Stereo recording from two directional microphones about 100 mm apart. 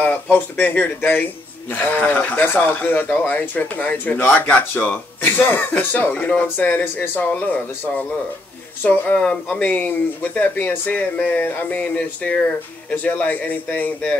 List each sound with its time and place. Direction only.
0.0 s a man's voice: 15° left (ahead or behind)